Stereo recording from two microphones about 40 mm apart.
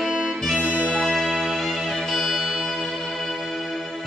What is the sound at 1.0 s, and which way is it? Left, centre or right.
Music, centre.